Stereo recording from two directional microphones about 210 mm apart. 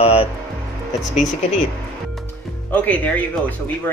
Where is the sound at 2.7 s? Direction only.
5° left (ahead or behind).